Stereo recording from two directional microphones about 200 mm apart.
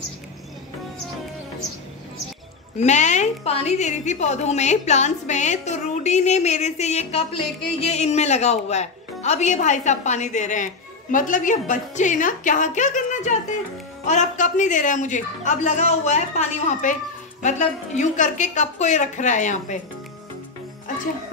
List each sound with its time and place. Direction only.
2.8 s a woman's voice: 35° left (ahead or behind)